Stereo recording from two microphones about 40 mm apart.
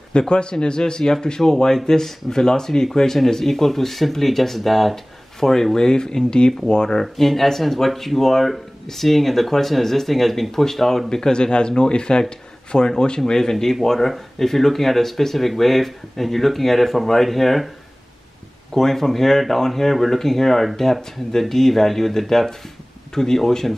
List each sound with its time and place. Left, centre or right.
0.1 s speech: left
7.0 s speech: centre
18.7 s speech: centre